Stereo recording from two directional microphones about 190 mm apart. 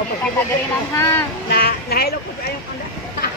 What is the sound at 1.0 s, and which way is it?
Speech, 15° left (ahead or behind).